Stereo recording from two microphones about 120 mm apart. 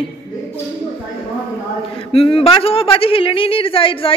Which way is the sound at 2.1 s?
55° left (ahead or behind).